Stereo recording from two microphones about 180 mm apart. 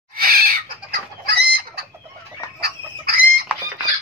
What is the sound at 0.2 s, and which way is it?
Chicken, 55° right (ahead or behind).